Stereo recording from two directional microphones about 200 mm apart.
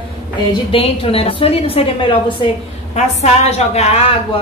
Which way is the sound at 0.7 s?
30° left (ahead or behind).